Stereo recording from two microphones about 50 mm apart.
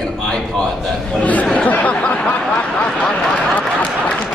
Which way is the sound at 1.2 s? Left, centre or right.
Left.